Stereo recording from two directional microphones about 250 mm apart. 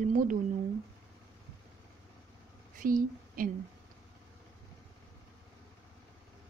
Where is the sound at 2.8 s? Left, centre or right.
Right.